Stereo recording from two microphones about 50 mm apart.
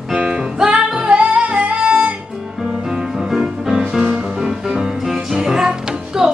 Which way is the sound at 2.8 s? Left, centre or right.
Centre.